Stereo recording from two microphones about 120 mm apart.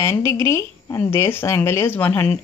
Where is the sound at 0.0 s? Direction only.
20° left (ahead or behind).